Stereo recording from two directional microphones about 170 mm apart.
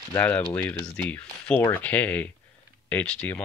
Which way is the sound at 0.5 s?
10° left (ahead or behind).